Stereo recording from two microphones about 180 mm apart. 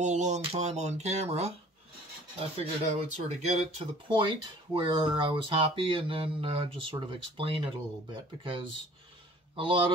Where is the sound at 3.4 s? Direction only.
35° right (ahead or behind).